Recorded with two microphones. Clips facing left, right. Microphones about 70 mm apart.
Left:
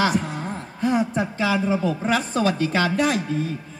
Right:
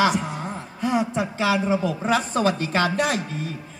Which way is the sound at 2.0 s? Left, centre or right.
Right.